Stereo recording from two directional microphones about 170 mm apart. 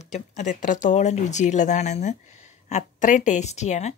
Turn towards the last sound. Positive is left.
turn(degrees=40)  # may be behind; listen again after turning